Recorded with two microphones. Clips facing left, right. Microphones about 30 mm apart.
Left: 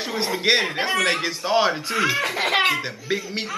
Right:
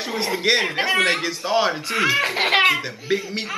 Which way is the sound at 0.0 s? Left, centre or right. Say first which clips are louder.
Right 1 dB; centre.